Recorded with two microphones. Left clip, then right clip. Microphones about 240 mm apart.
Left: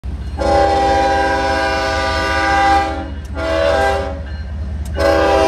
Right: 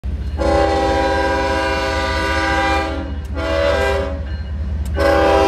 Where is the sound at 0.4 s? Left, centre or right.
Centre.